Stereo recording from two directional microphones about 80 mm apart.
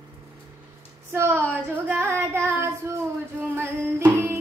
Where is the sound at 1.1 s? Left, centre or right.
Right.